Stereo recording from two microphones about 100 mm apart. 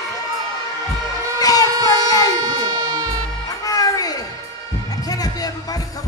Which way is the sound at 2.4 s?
45° right (ahead or behind).